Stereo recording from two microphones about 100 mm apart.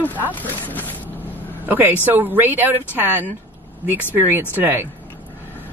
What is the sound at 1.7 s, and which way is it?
Speech, 20° right (ahead or behind).